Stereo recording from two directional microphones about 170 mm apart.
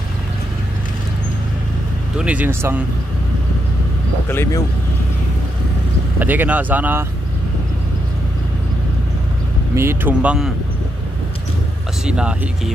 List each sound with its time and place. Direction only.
2.1 s speech: 10° right (ahead or behind)
4.3 s speech: 15° left (ahead or behind)
6.1 s speech: 10° right (ahead or behind)
9.8 s speech: 15° right (ahead or behind)
12.1 s speech: 5° right (ahead or behind)